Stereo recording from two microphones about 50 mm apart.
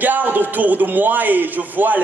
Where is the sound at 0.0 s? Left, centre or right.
Right.